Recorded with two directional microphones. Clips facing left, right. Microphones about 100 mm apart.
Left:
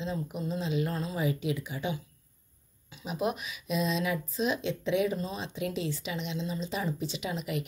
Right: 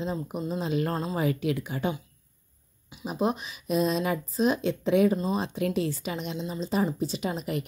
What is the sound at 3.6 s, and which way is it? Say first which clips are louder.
Speech: right 4 dB; 45° right (ahead or behind).